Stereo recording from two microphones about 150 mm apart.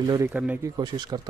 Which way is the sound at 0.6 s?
25° right (ahead or behind).